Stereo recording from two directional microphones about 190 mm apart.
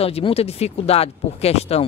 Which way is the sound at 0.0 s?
30° left (ahead or behind).